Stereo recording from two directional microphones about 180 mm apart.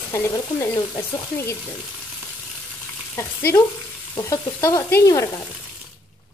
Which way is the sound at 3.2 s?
15° left (ahead or behind).